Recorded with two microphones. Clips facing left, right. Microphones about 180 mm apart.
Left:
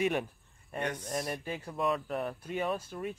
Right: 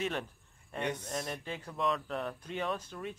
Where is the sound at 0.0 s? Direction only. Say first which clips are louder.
Left 5 dB; 10° left (ahead or behind).